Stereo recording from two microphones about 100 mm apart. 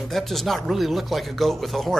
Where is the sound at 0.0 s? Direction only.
Centre (ahead or behind).